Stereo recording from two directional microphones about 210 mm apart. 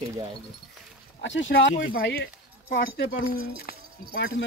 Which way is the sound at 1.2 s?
60° left (ahead or behind).